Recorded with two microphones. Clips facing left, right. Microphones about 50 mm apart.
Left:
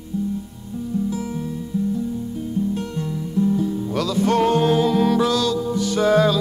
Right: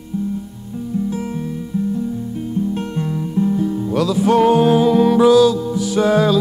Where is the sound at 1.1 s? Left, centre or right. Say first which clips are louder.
Right 2 dB; right.